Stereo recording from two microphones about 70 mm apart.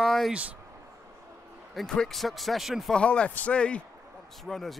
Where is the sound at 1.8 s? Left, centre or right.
Centre.